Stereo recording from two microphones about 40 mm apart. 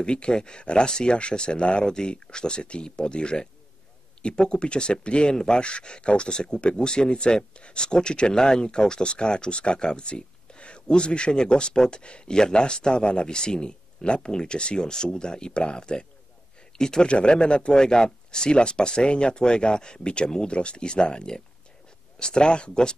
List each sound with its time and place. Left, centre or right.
0.0 s speech: left